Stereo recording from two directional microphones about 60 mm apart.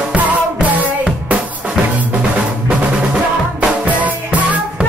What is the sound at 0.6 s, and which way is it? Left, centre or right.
Music, right.